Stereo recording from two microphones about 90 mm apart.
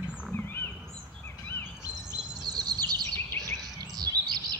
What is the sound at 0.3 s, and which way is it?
Wild animals, 25° left (ahead or behind).